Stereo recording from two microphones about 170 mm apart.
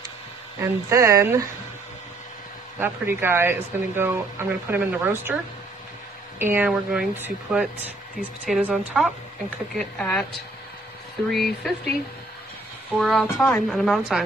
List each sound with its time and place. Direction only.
0.6 s speech: 15° right (ahead or behind)
2.8 s speech: 10° right (ahead or behind)
6.4 s a woman's voice: 10° right (ahead or behind); by 10.2 s 5° left (ahead or behind)
11.3 s a woman's voice: centre (ahead or behind)
13.0 s a woman's voice: centre (ahead or behind)